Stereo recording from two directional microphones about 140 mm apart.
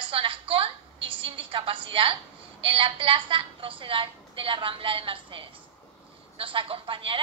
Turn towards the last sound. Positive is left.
turn(degrees=-40)  # may be behind; listen again after turning